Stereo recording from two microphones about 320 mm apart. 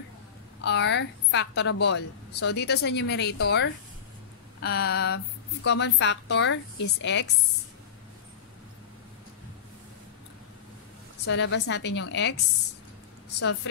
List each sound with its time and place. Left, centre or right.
0.6 s a woman's voice: left
11.2 s a woman's voice: left